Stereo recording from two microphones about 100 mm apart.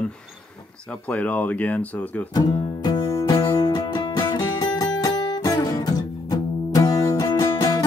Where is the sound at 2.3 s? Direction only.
45° left (ahead or behind).